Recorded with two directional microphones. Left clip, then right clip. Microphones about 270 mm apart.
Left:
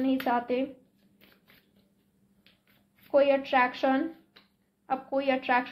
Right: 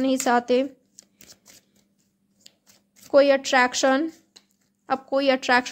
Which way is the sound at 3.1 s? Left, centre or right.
Right.